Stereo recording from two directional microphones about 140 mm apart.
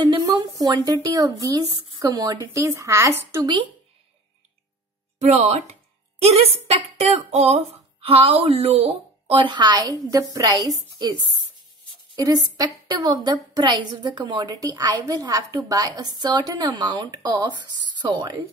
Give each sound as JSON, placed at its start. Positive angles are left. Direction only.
{"t": 0.0, "sound": "a woman's voice", "side_deg": -30}
{"t": 5.2, "sound": "speech", "side_deg": -50}
{"t": 12.2, "sound": "a woman's voice", "side_deg": -30}